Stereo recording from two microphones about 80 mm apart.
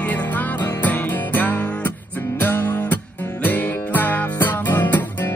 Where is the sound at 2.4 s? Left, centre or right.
Left.